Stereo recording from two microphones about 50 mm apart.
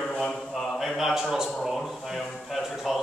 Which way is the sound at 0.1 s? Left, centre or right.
Centre.